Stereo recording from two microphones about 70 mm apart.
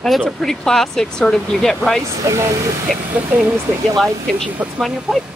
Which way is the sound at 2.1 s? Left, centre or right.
Right.